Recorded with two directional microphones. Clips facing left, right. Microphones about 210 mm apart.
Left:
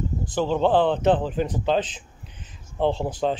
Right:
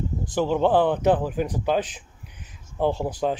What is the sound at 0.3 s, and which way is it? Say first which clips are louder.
Speech: even; 15° right (ahead or behind).